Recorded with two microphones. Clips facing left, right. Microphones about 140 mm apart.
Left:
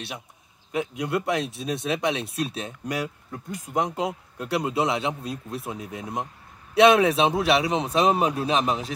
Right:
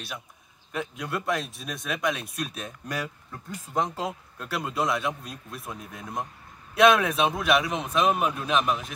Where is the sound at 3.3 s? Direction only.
15° left (ahead or behind).